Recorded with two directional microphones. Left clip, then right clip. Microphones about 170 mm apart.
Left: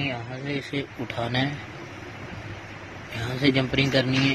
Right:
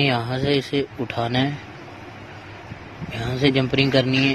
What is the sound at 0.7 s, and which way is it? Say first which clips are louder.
Speech: right 6 dB; 30° right (ahead or behind).